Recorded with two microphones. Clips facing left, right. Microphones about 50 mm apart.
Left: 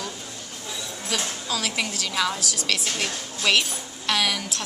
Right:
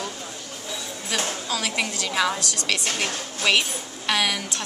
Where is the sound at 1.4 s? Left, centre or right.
Centre.